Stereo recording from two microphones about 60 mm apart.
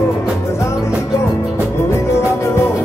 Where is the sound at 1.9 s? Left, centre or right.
Left.